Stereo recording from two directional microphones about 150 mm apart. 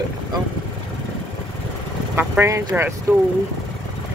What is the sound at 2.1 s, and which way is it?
Speech, 15° right (ahead or behind).